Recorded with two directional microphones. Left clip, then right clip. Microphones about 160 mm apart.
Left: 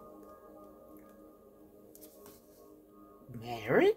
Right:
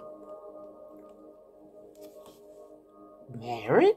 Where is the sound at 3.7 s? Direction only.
30° left (ahead or behind).